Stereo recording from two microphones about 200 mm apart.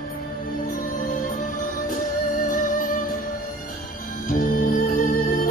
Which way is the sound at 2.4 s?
40° left (ahead or behind).